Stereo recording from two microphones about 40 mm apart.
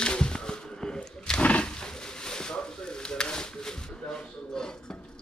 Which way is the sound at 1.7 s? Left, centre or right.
Centre.